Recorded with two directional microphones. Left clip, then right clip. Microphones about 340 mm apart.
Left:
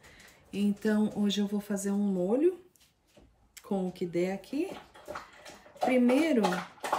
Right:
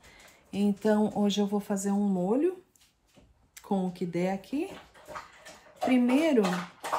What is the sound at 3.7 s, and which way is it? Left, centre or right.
Speech, centre.